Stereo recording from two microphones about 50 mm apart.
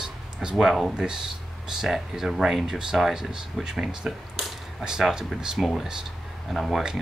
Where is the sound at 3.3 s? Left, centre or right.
Centre.